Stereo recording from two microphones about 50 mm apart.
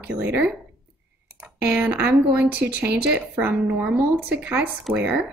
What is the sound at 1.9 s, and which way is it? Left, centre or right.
A woman's voice, right.